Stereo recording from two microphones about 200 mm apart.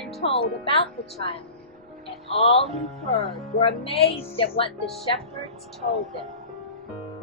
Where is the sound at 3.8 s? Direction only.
30° left (ahead or behind).